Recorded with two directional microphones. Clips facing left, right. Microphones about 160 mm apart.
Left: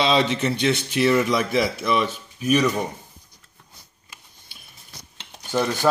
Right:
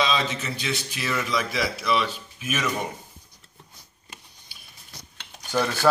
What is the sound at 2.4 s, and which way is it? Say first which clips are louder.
Speech: left 9 dB; 35° left (ahead or behind).